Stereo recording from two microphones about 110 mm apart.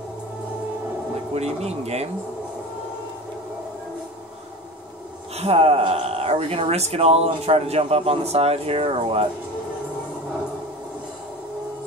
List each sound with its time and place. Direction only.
1.3 s speech: 75° right (ahead or behind)
5.3 s speech: 70° right (ahead or behind)